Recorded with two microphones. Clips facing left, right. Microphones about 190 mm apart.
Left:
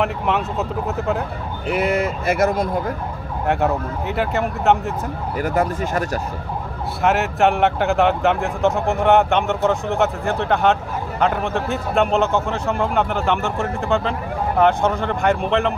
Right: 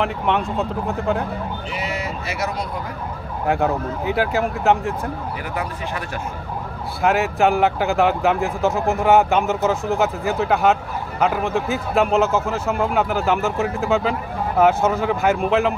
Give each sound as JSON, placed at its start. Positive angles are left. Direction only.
{"t": 0.0, "sound": "speech", "side_deg": 0}
{"t": 1.7, "sound": "speech", "side_deg": 55}
{"t": 3.4, "sound": "speech", "side_deg": 0}
{"t": 5.4, "sound": "speech", "side_deg": 45}
{"t": 7.0, "sound": "speech", "side_deg": 0}